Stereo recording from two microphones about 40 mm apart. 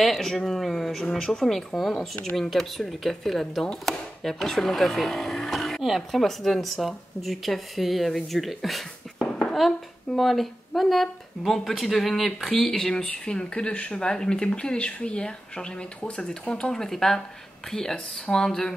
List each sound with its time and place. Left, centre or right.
0.0 s speech: centre
5.8 s speech: centre
9.2 s a sound: left
9.5 s speech: centre
12.9 s speech: left
14.0 s speech: centre
16.7 s speech: centre